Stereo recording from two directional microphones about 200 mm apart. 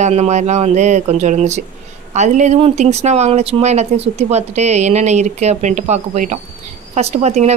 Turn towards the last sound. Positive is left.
turn(degrees=-35)  # may be behind; listen again after turning